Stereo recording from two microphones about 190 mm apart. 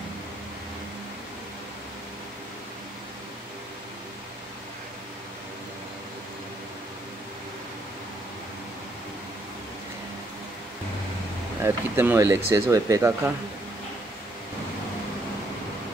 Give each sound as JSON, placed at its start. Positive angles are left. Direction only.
{"t": 11.6, "sound": "speech", "side_deg": -15}